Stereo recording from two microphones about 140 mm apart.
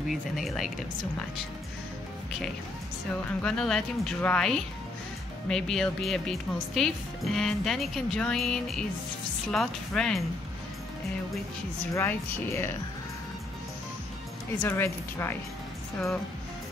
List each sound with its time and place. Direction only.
0.1 s music: centre (ahead or behind)
3.3 s music: 5° left (ahead or behind)
11.9 s speech: 20° left (ahead or behind)
14.6 s speech: 15° left (ahead or behind)